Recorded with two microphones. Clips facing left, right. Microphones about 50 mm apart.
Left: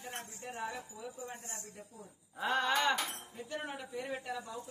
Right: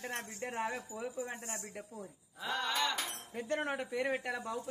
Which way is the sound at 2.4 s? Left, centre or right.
Centre.